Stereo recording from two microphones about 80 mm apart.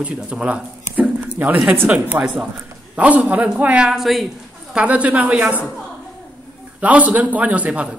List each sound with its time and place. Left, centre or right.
0.0 s a woman's voice: centre
4.7 s a man's voice: centre
6.8 s a man's voice: centre